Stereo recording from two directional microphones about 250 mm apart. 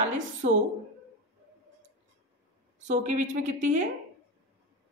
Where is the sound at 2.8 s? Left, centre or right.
Right.